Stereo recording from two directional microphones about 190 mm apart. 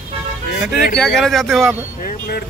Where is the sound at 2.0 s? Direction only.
55° left (ahead or behind).